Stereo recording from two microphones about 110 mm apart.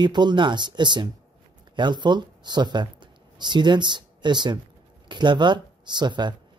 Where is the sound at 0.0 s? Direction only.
40° right (ahead or behind).